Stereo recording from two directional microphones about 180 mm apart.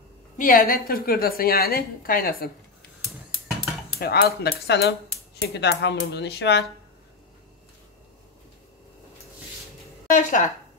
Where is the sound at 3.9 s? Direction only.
60° left (ahead or behind).